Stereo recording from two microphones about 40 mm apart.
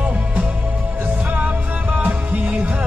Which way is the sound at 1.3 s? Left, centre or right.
Right.